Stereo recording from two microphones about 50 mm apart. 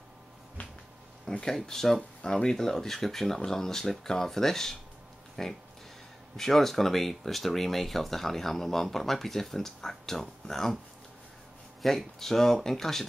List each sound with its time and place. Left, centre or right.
0.6 s a sound: left
1.4 s speech: centre
11.8 s speech: centre